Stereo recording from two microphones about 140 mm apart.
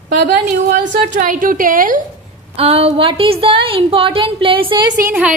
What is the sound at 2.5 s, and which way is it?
A woman's voice, 45° right (ahead or behind).